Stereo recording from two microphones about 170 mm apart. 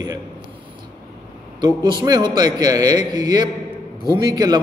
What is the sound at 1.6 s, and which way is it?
A man's voice, 25° right (ahead or behind).